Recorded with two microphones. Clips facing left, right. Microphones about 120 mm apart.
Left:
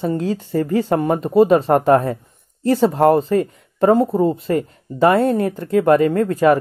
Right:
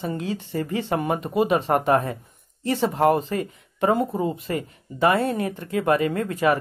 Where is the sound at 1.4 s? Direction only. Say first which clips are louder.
Left 8 dB; 5° right (ahead or behind).